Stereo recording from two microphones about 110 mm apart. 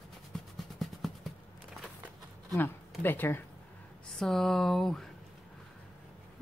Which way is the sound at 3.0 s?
20° left (ahead or behind).